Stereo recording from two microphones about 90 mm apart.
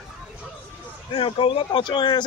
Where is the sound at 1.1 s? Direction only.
75° left (ahead or behind); by 2.2 s 55° left (ahead or behind).